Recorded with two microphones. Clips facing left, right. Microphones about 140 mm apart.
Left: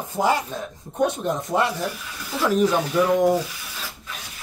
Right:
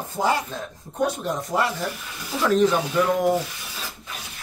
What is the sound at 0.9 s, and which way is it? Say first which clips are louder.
Speech: left 2 dB; 20° left (ahead or behind).